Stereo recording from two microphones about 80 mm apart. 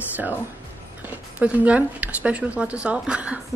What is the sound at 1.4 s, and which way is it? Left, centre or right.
Speech, centre.